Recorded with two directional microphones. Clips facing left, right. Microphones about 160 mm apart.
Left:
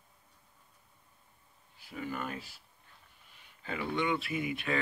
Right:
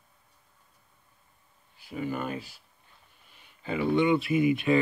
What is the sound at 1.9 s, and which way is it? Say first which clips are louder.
Speech: right 6 dB; 15° right (ahead or behind).